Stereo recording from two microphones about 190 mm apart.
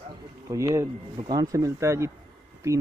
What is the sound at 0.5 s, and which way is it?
Speech, 15° right (ahead or behind).